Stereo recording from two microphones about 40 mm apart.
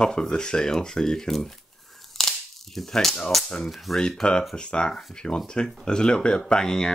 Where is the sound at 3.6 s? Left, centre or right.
Centre.